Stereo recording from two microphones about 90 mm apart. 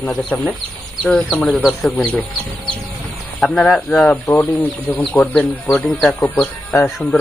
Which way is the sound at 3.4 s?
5° left (ahead or behind).